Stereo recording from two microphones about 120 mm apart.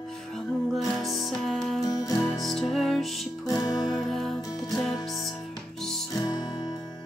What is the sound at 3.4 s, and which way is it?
Music, 30° left (ahead or behind).